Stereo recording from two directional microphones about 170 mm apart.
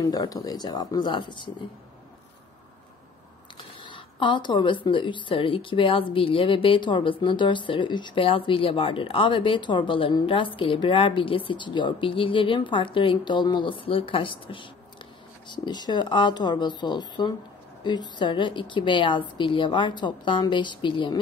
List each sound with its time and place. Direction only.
0.0 s speech: 20° left (ahead or behind)
3.8 s speech: 30° left (ahead or behind)